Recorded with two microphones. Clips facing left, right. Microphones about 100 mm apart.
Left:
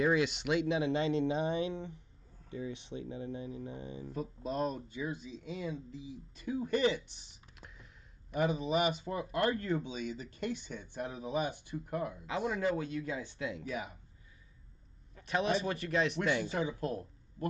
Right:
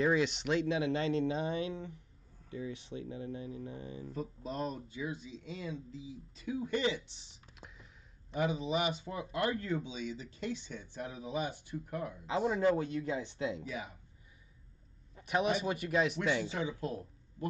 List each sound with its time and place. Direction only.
0.0 s speech: 5° left (ahead or behind)
0.7 s speech: 20° left (ahead or behind)
4.4 s speech: 50° left (ahead or behind)
6.4 s speech: 45° left (ahead or behind)
7.5 s a sound: centre (ahead or behind)
8.4 s speech: 50° left (ahead or behind)
12.4 s speech: 40° right (ahead or behind)
15.1 s a man's voice: 15° right (ahead or behind)
16.5 s speech: 50° left (ahead or behind)